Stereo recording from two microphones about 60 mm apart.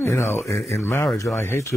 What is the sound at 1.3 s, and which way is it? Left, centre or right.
Speech, left.